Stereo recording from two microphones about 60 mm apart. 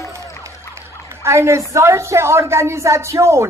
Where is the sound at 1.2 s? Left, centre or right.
Right.